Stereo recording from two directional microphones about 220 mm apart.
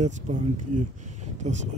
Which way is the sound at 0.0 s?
35° right (ahead or behind).